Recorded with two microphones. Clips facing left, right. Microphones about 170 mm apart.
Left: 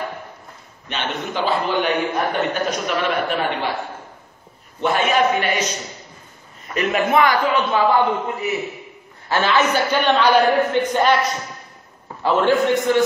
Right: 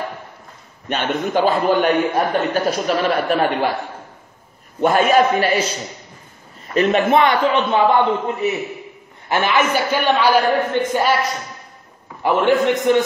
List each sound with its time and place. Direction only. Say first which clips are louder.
0.8 s a man's voice: right 5 dB; 50° right (ahead or behind)
2.5 s a man's voice: right 4 dB; 35° right (ahead or behind)
4.7 s a man's voice: right 4 dB; 35° right (ahead or behind)
6.7 s a man's voice: right 4 dB; 25° right (ahead or behind); by 11.1 s 5° right (ahead or behind)
12.2 s a man's voice: right 1 dB; 15° right (ahead or behind)